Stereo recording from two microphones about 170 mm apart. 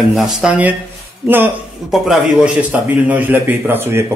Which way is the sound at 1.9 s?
Centre (ahead or behind).